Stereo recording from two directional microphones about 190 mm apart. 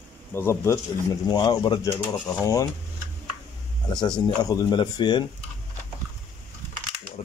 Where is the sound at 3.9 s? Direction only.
20° left (ahead or behind).